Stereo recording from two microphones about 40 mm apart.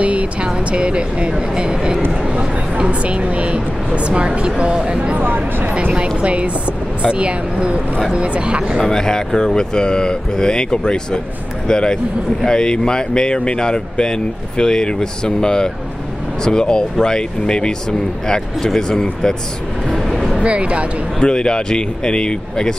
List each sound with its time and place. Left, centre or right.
0.0 s a sound: right
0.7 s speech: right
5.2 s speech: right
5.9 s speech: right
8.8 s speech: centre
19.9 s vehicle: centre
20.4 s speech: right
21.2 s speech: left